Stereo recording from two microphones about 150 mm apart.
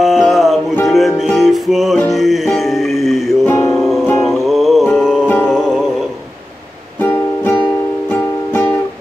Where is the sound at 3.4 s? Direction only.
20° left (ahead or behind).